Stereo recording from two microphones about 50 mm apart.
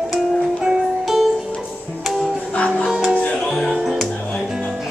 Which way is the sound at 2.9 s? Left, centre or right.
Centre.